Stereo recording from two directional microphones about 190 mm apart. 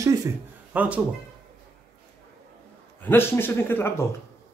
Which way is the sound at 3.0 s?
10° left (ahead or behind).